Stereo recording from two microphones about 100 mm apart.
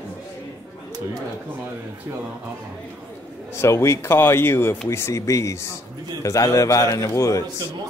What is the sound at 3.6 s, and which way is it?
A man's voice, 30° left (ahead or behind).